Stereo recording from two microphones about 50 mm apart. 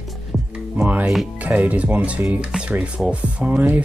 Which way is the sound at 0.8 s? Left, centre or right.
Right.